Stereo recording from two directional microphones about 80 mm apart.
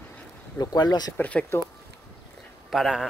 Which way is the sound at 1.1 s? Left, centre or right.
Centre.